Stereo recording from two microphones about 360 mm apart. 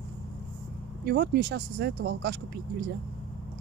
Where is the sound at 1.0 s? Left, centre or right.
Right.